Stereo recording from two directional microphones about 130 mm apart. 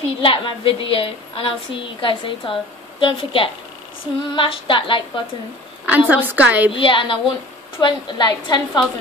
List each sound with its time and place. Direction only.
0.2 s a woman's voice: 45° left (ahead or behind)
5.9 s a woman's voice: 15° right (ahead or behind)
6.7 s a woman's voice: 40° left (ahead or behind)